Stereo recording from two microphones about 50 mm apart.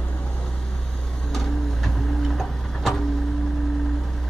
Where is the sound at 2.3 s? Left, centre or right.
Centre.